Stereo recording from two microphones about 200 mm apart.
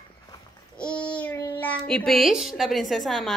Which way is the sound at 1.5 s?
10° left (ahead or behind).